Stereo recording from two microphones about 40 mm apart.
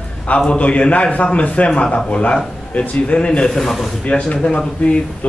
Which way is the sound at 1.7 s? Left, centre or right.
Left.